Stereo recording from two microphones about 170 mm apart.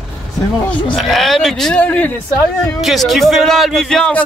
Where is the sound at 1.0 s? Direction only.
Centre (ahead or behind).